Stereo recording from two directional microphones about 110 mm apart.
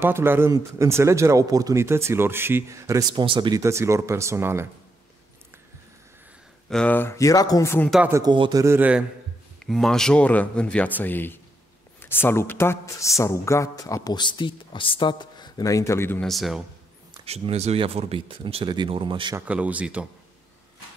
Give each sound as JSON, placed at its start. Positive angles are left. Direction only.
{"t": 0.0, "sound": "speech", "side_deg": -20}
{"t": 3.1, "sound": "speech", "side_deg": -45}
{"t": 3.5, "sound": "speech", "side_deg": -25}
{"t": 6.7, "sound": "speech", "side_deg": 10}
{"t": 7.0, "sound": "speech", "side_deg": 25}
{"t": 8.1, "sound": "speech", "side_deg": -40}
{"t": 8.6, "sound": "speech", "side_deg": -15}
{"t": 9.7, "sound": "speech", "side_deg": 5}
{"t": 14.1, "sound": "speech", "side_deg": 45}
{"t": 16.2, "sound": "a man's voice", "side_deg": 0}
{"t": 17.2, "sound": "speech", "side_deg": -70}
{"t": 19.4, "sound": "speech", "side_deg": -15}